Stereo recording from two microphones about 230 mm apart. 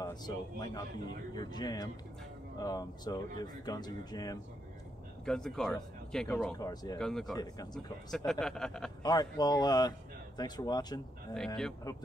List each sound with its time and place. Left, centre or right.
0.0 s speech: centre
5.2 s speech: centre
6.6 s speech: centre
7.0 s speech: centre
9.0 s speech: centre
11.3 s speech: centre